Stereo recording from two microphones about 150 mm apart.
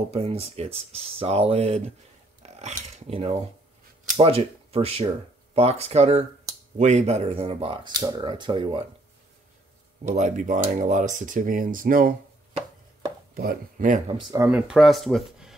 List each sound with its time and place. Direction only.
0.1 s speech: 40° right (ahead or behind)
10.0 s speech: 55° right (ahead or behind)
13.3 s speech: 80° right; by 14.0 s 60° right (ahead or behind)
14.5 s speech: 5° right (ahead or behind)